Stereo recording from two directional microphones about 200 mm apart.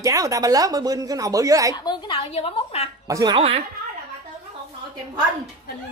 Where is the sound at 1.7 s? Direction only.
20° left (ahead or behind).